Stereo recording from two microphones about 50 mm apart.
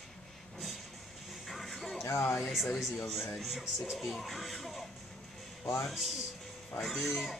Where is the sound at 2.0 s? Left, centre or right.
Left.